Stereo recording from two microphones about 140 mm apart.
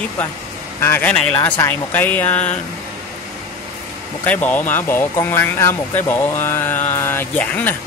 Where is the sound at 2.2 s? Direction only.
55° left (ahead or behind).